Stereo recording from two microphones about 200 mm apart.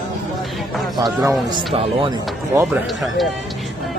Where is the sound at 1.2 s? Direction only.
25° right (ahead or behind).